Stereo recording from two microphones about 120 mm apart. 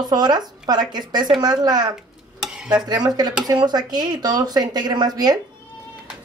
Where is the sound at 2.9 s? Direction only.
35° right (ahead or behind).